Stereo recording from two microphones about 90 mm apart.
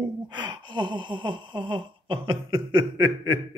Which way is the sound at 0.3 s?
60° right (ahead or behind).